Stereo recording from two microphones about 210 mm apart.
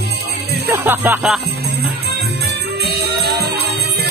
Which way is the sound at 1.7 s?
50° right (ahead or behind).